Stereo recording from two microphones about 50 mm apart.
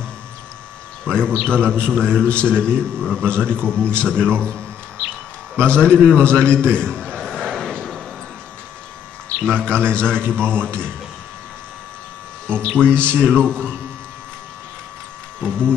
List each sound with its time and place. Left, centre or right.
1.0 s a man's voice: centre
5.6 s music: centre
5.9 s a man's voice: centre
7.3 s vehicle: centre
9.5 s a man's voice: centre
12.4 s a man's voice: left
13.2 s music: centre